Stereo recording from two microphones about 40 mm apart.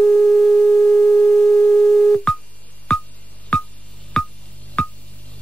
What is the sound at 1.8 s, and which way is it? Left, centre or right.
Busy signal, centre.